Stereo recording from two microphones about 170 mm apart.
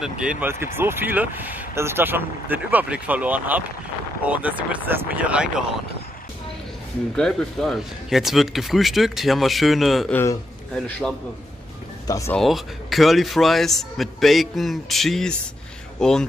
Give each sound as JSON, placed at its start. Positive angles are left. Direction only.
{"t": 0.0, "sound": "speech", "side_deg": -5}
{"t": 7.2, "sound": "speech", "side_deg": 5}
{"t": 10.1, "sound": "a man's voice", "side_deg": 10}
{"t": 12.1, "sound": "speech", "side_deg": 20}
{"t": 12.4, "sound": "speech", "side_deg": 0}